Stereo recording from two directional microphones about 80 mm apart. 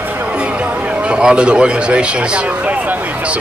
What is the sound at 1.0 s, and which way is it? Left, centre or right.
Speech, centre.